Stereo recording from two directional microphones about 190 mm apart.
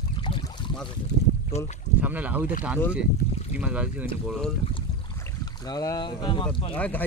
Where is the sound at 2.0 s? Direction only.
10° right (ahead or behind).